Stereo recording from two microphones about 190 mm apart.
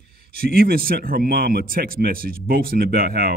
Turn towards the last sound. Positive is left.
turn(degrees=-55)  # may be behind; listen again after turning